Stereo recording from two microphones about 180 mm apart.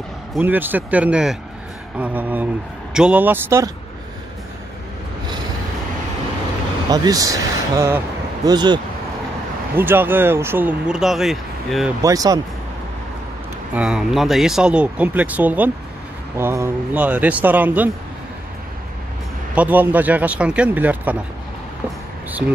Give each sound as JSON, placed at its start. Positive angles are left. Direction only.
{"t": 0.3, "sound": "speech", "side_deg": -10}
{"t": 6.9, "sound": "speech", "side_deg": -20}
{"t": 9.8, "sound": "speech", "side_deg": -10}
{"t": 12.0, "sound": "speech", "side_deg": -20}
{"t": 13.7, "sound": "speech", "side_deg": -5}
{"t": 19.5, "sound": "speech", "side_deg": -10}
{"t": 22.4, "sound": "speech", "side_deg": -65}